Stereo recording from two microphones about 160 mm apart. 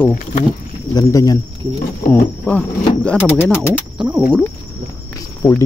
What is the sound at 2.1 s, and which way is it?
Speech, 10° left (ahead or behind).